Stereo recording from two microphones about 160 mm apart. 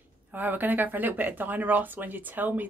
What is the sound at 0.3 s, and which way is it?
Speech, 10° right (ahead or behind).